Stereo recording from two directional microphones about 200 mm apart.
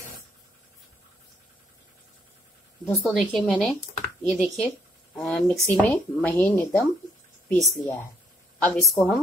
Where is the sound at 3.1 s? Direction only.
Centre (ahead or behind).